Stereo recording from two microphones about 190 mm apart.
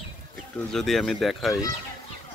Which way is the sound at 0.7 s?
Centre (ahead or behind).